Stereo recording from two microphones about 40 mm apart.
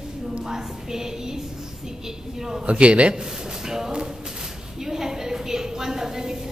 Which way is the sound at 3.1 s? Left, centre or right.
Centre.